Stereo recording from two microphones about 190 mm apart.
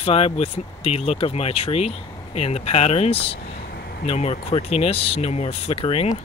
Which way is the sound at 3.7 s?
55° left (ahead or behind).